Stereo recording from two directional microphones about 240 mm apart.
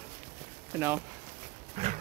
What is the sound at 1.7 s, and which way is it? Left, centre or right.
Dog, right.